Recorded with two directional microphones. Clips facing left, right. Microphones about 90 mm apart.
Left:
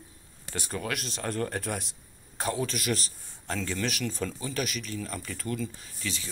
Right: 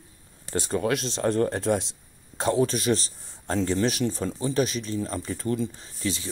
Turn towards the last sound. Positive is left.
turn(degrees=-30)  # may be behind; listen again after turning